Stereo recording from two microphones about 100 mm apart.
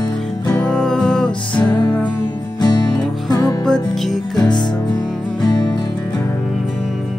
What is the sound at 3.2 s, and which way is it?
Music, 40° left (ahead or behind).